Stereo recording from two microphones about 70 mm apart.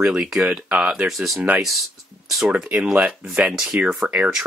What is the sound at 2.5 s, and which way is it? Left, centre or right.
Speech, centre.